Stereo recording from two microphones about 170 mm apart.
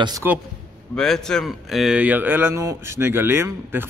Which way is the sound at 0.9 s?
5° left (ahead or behind).